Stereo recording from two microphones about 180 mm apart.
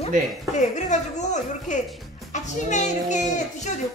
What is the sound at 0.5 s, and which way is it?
A woman's voice, 40° left (ahead or behind).